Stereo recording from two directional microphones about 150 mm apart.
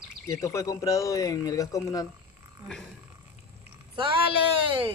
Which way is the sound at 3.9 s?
35° right (ahead or behind).